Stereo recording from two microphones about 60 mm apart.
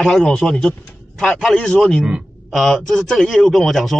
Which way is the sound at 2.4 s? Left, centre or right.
Centre.